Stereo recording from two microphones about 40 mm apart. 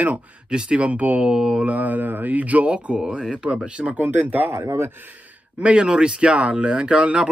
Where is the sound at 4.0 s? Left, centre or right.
Right.